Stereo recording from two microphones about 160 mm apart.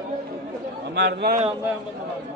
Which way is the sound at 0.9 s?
90° right.